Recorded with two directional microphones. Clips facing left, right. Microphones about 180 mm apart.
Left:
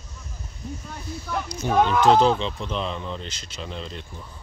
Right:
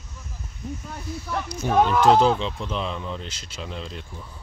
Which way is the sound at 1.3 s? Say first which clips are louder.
Even; 5° right (ahead or behind).